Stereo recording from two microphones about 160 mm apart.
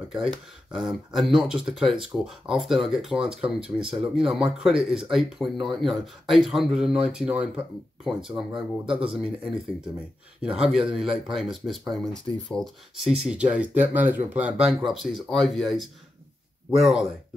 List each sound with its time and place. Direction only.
0.1 s speech: centre (ahead or behind)
8.8 s speech: 35° right (ahead or behind)
9.1 s speech: centre (ahead or behind)